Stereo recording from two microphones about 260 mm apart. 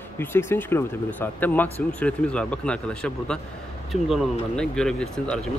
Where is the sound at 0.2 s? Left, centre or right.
Centre.